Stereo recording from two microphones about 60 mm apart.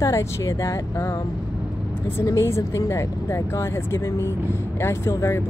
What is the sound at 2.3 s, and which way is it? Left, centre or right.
Speech, left.